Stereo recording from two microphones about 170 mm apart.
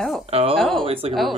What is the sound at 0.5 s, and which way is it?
Speech, centre (ahead or behind).